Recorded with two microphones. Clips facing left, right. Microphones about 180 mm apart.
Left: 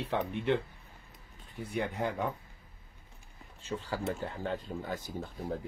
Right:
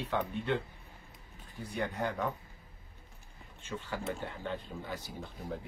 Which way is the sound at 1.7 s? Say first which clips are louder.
Left 1 dB; 25° left (ahead or behind).